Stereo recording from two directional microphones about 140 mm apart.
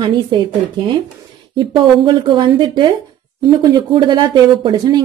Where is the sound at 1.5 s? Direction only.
35° right (ahead or behind).